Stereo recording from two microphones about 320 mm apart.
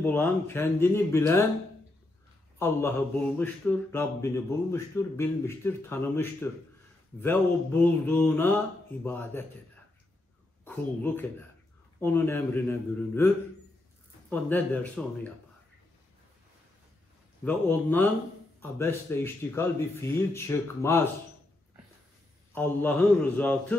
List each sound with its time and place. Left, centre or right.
0.0 s speech: centre
3.3 s speech: centre
10.6 s speech: centre
14.3 s speech: centre
17.5 s speech: centre
22.5 s speech: centre